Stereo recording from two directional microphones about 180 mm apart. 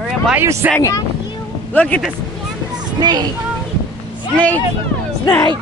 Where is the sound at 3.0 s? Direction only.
25° right (ahead or behind).